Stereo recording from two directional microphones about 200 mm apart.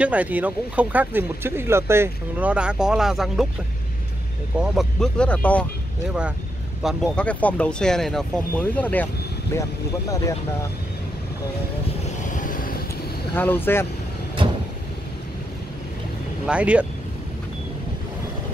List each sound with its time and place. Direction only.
0.0 s speech: 5° right (ahead or behind)
4.6 s speech: centre (ahead or behind)
6.8 s speech: centre (ahead or behind); by 10.3 s 15° left (ahead or behind)
12.4 s vehicle: 40° left (ahead or behind)
13.3 s speech: 10° left (ahead or behind)
14.4 s vehicle: 25° right (ahead or behind)
16.4 s speech: 5° right (ahead or behind)